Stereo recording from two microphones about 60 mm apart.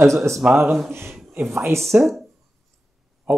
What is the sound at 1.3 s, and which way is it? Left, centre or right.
Speech, right.